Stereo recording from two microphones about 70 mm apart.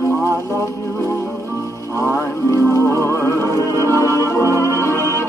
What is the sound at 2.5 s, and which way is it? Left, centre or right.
Music, left.